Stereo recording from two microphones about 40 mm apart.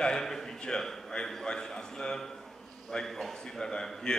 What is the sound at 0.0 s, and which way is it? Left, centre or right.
A man's voice, centre.